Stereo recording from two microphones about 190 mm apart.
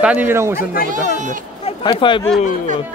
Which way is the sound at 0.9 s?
40° right (ahead or behind).